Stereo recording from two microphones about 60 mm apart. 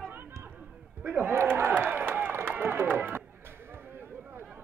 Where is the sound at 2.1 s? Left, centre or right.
Right.